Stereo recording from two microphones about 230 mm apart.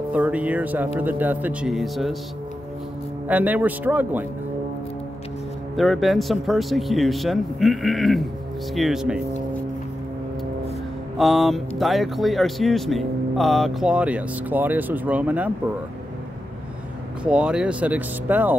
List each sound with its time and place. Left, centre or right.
0.1 s speech: centre
3.3 s speech: centre
5.8 s speech: centre
11.1 s speech: centre
17.2 s speech: centre